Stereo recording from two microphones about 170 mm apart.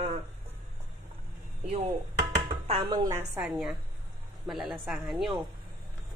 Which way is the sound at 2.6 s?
30° right (ahead or behind).